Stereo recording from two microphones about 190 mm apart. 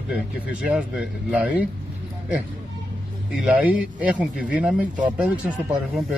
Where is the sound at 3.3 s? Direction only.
Centre (ahead or behind).